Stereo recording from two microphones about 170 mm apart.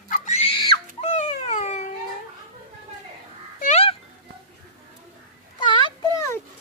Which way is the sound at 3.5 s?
40° left (ahead or behind).